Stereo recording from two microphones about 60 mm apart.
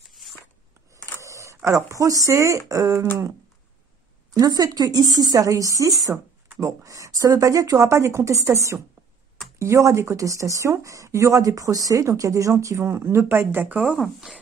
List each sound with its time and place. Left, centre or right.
0.1 s a sound: centre
1.2 s speech: right
4.3 s speech: right
13.7 s speech: centre